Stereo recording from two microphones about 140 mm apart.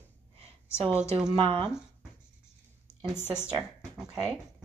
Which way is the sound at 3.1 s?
15° left (ahead or behind).